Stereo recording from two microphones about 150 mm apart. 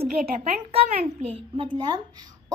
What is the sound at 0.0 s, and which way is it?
A woman's voice, 40° right (ahead or behind).